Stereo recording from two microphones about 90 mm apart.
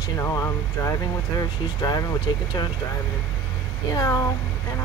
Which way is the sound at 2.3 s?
50° left (ahead or behind).